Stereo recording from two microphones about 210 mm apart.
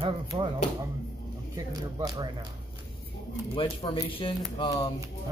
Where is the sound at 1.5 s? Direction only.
20° right (ahead or behind).